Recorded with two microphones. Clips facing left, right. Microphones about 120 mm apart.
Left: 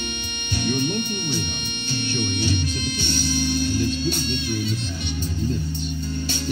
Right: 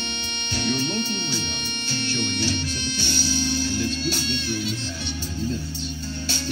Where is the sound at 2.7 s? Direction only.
55° left (ahead or behind).